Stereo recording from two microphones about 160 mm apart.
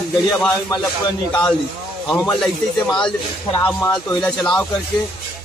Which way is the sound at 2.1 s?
5° left (ahead or behind).